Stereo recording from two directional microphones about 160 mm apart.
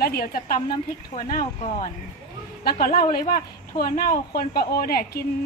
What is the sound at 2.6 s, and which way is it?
Speech, 65° left (ahead or behind).